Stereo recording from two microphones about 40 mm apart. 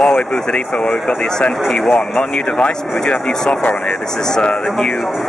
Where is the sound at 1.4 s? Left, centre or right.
Left.